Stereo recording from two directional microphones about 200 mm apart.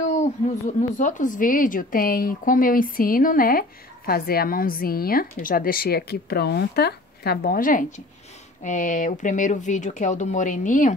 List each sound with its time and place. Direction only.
0.1 s speech: 35° left (ahead or behind)